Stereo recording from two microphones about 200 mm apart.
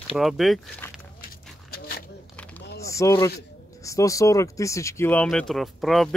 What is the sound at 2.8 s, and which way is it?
Speech, 15° left (ahead or behind).